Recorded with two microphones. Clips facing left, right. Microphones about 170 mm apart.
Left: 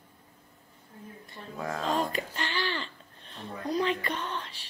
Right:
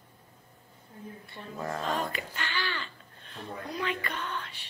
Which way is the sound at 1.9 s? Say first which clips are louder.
Left 3 dB; 35° left (ahead or behind).